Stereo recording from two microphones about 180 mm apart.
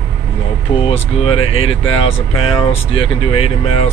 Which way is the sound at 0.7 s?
30° left (ahead or behind).